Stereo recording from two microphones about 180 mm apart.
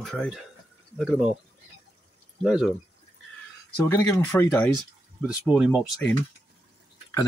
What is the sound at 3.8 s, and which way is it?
Speech, 15° left (ahead or behind).